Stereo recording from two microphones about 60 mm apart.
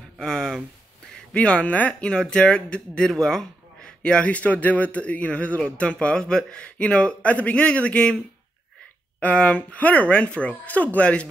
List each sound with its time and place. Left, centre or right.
0.2 s speech: centre
9.2 s speech: centre